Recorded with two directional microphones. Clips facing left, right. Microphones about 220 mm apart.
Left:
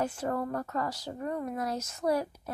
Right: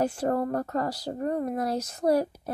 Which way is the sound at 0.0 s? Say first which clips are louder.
Right 5 dB; 40° right (ahead or behind).